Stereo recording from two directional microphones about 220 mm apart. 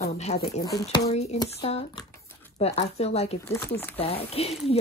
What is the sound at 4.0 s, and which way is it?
Speech, 25° left (ahead or behind).